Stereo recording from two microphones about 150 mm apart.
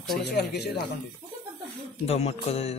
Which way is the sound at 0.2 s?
90° left.